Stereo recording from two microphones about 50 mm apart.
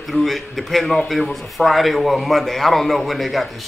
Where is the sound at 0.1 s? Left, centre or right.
Centre.